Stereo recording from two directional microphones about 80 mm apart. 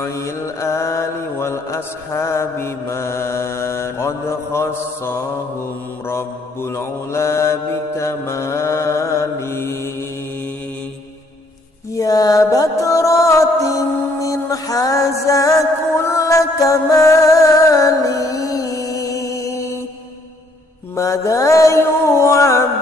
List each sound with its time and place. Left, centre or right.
0.0 s mantra: left
12.0 s music: left
20.9 s mantra: left